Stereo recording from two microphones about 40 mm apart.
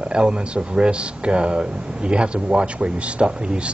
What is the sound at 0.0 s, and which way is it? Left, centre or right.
Speech, right.